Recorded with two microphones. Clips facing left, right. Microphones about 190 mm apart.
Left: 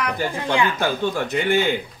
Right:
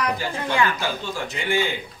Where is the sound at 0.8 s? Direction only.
55° left (ahead or behind).